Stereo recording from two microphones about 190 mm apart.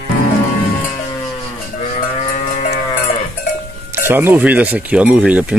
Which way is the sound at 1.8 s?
40° left (ahead or behind).